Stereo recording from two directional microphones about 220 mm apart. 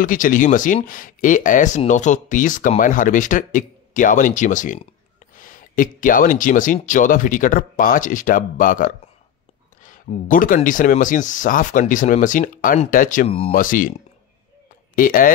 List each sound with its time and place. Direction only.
0.0 s speech: 35° left (ahead or behind)
15.0 s speech: 40° left (ahead or behind)